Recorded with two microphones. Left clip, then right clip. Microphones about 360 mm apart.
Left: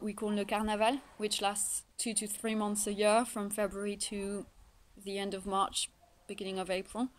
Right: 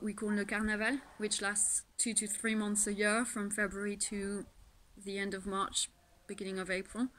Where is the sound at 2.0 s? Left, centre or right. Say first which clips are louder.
Even; left.